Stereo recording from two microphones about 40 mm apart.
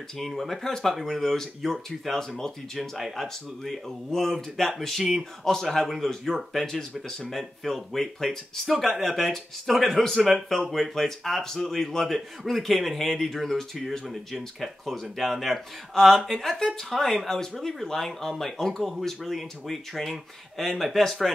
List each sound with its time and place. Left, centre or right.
0.2 s speech: centre
8.6 s a man's voice: centre